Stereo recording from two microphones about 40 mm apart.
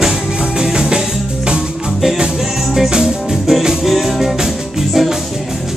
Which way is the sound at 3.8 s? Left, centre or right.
Centre.